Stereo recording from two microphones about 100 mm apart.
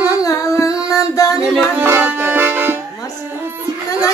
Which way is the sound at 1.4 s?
5° right (ahead or behind).